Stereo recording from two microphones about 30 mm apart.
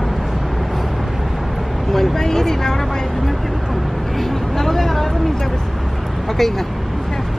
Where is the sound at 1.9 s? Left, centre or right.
Centre.